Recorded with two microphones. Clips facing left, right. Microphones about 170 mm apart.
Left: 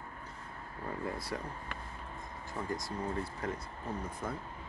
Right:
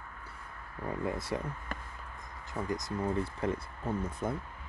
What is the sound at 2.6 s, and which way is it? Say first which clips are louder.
Speech: right 3 dB; 20° right (ahead or behind).